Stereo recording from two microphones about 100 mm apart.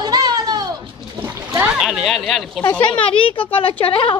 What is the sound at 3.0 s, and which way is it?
Speech, 65° left (ahead or behind).